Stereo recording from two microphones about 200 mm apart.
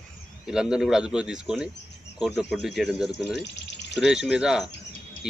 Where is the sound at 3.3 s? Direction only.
60° left (ahead or behind).